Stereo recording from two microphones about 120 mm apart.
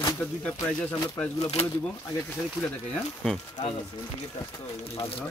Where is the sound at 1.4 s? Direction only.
60° left (ahead or behind).